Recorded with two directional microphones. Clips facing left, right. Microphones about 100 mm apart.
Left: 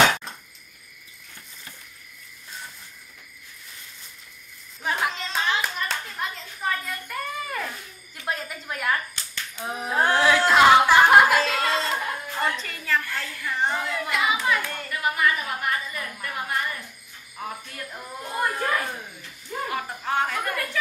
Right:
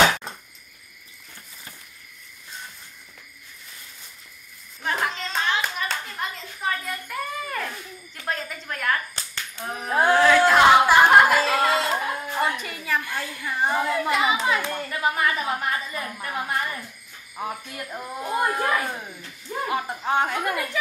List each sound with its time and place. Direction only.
4.8 s hands: 5° left (ahead or behind)
8.3 s a sound: 5° left (ahead or behind)
10.9 s music: 5° right (ahead or behind)
13.7 s hands: 30° right (ahead or behind)
17.4 s a sound: 20° right (ahead or behind)
19.7 s chuckle: 20° right (ahead or behind)